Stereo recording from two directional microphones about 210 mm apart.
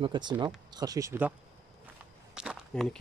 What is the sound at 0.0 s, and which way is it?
Speech, 20° right (ahead or behind).